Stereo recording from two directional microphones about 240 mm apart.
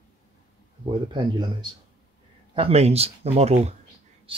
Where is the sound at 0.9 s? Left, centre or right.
Centre.